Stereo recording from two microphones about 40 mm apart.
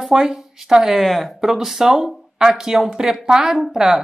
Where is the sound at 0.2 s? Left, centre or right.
Centre.